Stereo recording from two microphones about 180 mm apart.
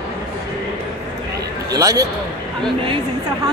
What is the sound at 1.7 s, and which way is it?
Speech, 15° right (ahead or behind).